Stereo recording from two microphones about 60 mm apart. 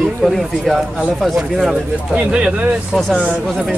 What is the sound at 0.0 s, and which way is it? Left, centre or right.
A man's voice, centre.